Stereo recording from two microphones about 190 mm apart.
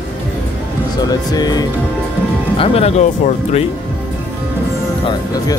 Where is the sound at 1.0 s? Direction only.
20° left (ahead or behind).